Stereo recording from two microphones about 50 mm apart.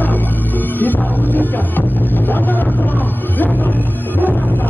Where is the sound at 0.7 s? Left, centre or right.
Left.